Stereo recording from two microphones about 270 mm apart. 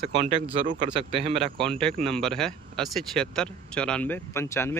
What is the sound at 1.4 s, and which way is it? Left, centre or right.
Speech, centre.